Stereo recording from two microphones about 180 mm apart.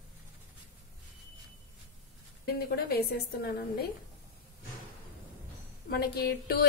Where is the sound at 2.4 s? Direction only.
60° left (ahead or behind).